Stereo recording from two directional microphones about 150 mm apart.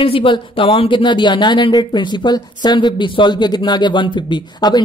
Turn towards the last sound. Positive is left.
turn(degrees=25)  # may be behind; listen again after turning